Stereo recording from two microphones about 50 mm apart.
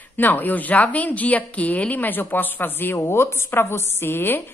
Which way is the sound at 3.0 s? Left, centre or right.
Left.